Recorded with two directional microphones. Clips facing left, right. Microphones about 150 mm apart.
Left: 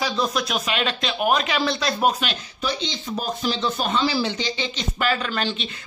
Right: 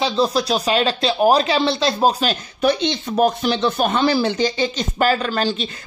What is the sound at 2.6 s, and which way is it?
Speech, 60° right (ahead or behind).